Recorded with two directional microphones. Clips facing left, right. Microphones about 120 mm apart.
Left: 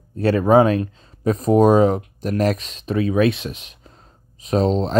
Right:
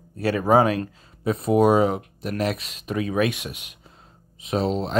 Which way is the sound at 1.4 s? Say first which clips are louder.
Left 4 dB; 35° left (ahead or behind).